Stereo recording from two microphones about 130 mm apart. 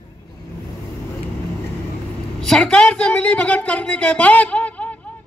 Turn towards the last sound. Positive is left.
turn(degrees=10)  # may be behind; listen again after turning